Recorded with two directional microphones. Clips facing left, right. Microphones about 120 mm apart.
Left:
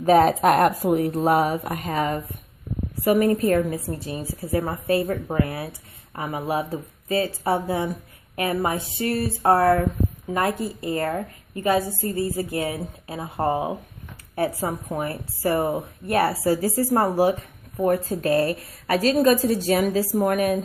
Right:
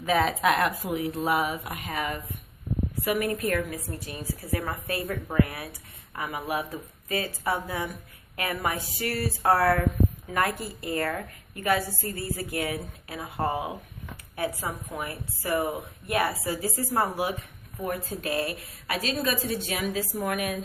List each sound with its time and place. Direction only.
0.0 s a woman's voice: 40° left (ahead or behind)